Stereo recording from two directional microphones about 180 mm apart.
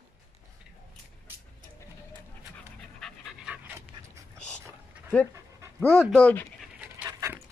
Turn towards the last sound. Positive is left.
turn(degrees=-15)  # may be behind; listen again after turning